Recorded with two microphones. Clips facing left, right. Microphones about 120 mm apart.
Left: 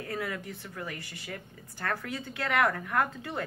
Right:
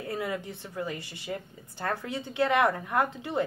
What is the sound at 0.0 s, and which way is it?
A woman's voice, 20° right (ahead or behind).